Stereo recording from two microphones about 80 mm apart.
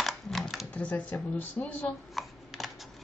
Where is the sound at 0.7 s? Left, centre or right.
Centre.